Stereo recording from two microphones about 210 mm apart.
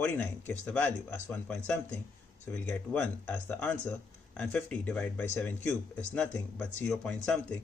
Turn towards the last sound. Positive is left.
turn(degrees=5)  # may be behind; listen again after turning